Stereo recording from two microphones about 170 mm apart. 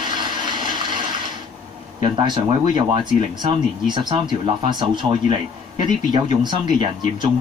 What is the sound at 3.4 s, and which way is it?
Speech, 25° right (ahead or behind).